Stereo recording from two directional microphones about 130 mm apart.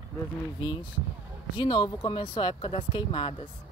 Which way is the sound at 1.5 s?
40° left (ahead or behind).